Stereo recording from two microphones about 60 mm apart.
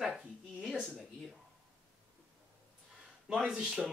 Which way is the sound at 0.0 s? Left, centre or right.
Centre.